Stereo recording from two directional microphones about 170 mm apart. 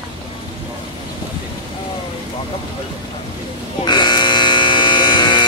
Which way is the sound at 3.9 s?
25° left (ahead or behind).